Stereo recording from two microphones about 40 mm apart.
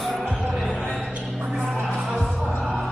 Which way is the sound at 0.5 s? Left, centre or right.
Centre.